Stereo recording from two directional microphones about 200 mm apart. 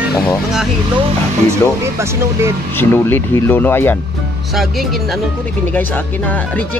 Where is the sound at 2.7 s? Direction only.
10° left (ahead or behind).